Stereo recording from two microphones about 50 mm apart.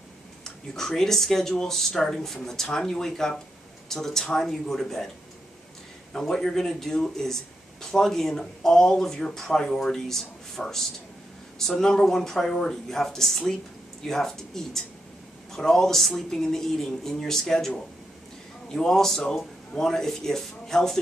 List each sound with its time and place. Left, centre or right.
0.4 s speech: centre
6.1 s speech: centre